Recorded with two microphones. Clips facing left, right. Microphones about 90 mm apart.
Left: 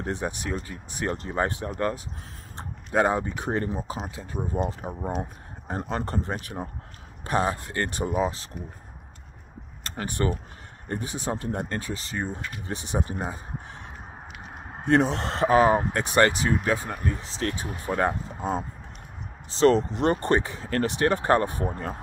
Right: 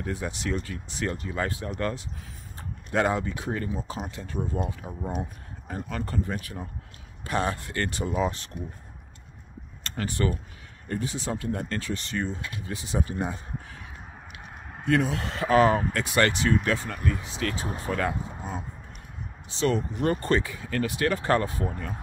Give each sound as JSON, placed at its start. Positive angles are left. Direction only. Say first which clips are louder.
{"t": 0.0, "sound": "speech", "louder": "left 2 dB", "side_deg": 25}
{"t": 2.5, "sound": "mechanisms", "louder": "left 2 dB", "side_deg": 25}
{"t": 3.8, "sound": "speech", "louder": "left 1 dB", "side_deg": 15}
{"t": 5.0, "sound": "speech", "louder": "left 1 dB", "side_deg": 35}
{"t": 9.9, "sound": "speech", "louder": "left 1 dB", "side_deg": 20}
{"t": 14.7, "sound": "speech", "louder": "left 3 dB", "side_deg": 30}
{"t": 17.0, "sound": "speech", "louder": "even", "side_deg": 25}
{"t": 20.0, "sound": "speech", "louder": "left 2 dB", "side_deg": 25}